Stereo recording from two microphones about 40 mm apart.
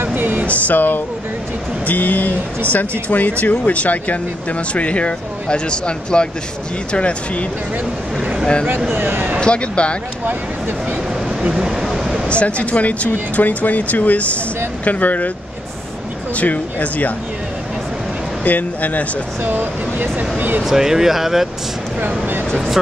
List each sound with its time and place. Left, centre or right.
0.0 s a sound: right
0.5 s speech: left
1.9 s speech: left
8.2 s speech: right
8.9 s a man's voice: right
9.4 s speech: left
11.5 s a sound: centre
12.3 s speech: left
16.3 s speech: left
18.4 s speech: left
19.4 s speech: right
20.6 s speech: centre